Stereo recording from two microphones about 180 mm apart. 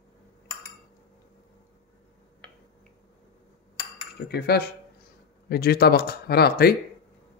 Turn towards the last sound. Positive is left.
turn(degrees=60)  # may be behind; listen again after turning